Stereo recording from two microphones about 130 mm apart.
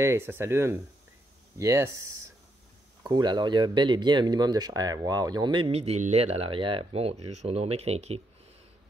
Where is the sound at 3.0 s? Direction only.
35° right (ahead or behind); by 8.2 s 55° right (ahead or behind).